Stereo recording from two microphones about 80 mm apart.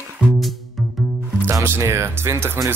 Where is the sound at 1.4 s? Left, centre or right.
Right.